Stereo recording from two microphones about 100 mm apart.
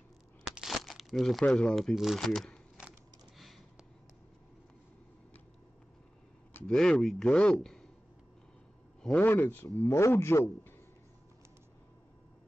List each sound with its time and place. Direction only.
0.4 s crumpling: 5° right (ahead or behind)
1.5 s speech: 5° left (ahead or behind)
3.3 s a sound: centre (ahead or behind)
6.7 s speech: 5° left (ahead or behind)
9.0 s a man's voice: 15° left (ahead or behind)
9.8 s a man's voice: 30° left (ahead or behind)